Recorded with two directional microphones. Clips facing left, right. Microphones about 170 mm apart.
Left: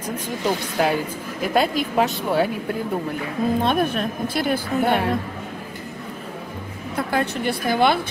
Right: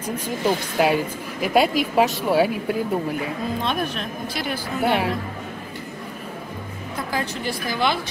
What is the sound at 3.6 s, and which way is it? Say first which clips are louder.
Speech: left 5 dB; 55° left (ahead or behind).